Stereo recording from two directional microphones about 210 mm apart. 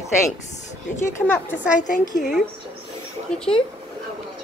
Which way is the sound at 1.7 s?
35° left (ahead or behind).